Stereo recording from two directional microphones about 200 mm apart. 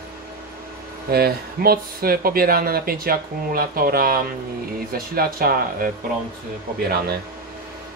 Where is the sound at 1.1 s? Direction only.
50° right (ahead or behind).